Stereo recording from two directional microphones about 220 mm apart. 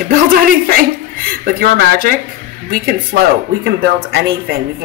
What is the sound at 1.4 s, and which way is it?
Speech, 40° right (ahead or behind).